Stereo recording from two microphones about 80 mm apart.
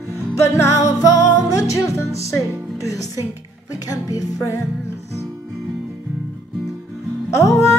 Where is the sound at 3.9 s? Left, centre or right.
Left.